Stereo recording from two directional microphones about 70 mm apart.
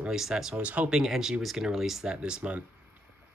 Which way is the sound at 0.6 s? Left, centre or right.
Centre.